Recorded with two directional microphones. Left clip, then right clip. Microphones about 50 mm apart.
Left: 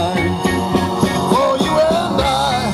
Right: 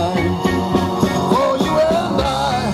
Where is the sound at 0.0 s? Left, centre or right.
Left.